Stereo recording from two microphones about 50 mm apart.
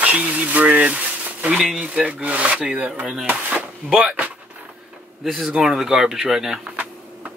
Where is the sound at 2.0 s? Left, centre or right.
Right.